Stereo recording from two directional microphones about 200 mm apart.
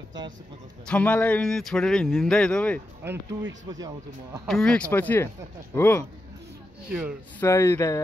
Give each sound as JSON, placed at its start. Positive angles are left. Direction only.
{"t": 0.8, "sound": "speech", "side_deg": 5}
{"t": 3.0, "sound": "speech", "side_deg": -10}
{"t": 4.5, "sound": "speech", "side_deg": 5}
{"t": 6.9, "sound": "speech", "side_deg": -5}
{"t": 7.3, "sound": "speech", "side_deg": 15}